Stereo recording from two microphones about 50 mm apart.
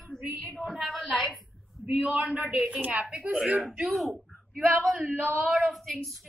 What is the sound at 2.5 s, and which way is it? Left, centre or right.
Speech, centre.